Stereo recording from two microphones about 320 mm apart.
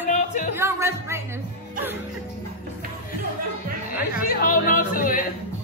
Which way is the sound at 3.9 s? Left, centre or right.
Left.